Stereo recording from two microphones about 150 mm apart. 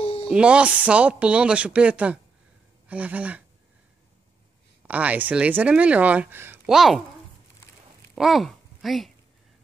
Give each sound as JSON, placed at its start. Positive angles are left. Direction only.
{"t": 0.0, "sound": "music", "side_deg": 40}
{"t": 0.3, "sound": "speech", "side_deg": -5}
{"t": 4.8, "sound": "speech", "side_deg": -10}
{"t": 8.2, "sound": "speech", "side_deg": 0}